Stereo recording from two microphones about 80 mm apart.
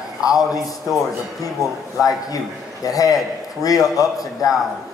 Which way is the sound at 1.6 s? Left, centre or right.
Left.